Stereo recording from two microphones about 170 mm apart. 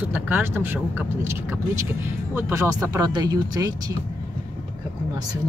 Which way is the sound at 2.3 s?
20° right (ahead or behind).